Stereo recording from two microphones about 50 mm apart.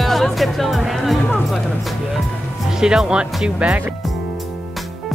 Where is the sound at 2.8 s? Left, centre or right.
Centre.